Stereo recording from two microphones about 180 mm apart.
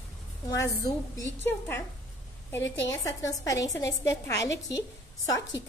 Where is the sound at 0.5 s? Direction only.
20° left (ahead or behind).